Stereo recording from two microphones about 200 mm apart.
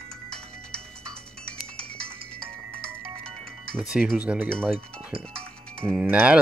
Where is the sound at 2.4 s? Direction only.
30° right (ahead or behind).